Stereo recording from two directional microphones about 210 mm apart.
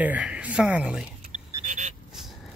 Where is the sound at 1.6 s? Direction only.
35° right (ahead or behind).